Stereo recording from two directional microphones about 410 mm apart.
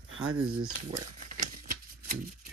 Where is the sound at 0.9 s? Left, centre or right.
Centre.